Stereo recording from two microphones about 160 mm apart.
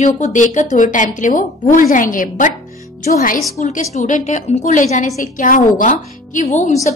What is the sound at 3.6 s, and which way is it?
A woman's voice, 45° left (ahead or behind).